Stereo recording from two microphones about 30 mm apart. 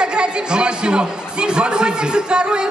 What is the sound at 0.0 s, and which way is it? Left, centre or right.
A woman's voice, right.